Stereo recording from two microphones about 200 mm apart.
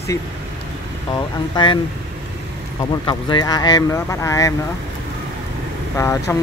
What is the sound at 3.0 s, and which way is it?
Speech, 20° left (ahead or behind).